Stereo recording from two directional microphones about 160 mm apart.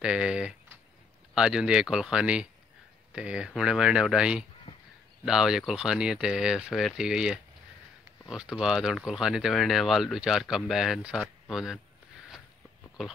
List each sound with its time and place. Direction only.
0.0 s speech: 5° right (ahead or behind)
4.7 s a sound: 25° left (ahead or behind)
5.2 s speech: 5° right (ahead or behind)